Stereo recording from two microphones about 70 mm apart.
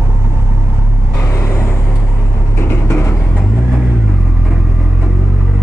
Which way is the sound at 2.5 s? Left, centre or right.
Left.